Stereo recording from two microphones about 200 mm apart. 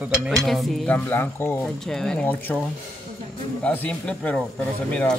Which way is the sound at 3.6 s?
5° left (ahead or behind).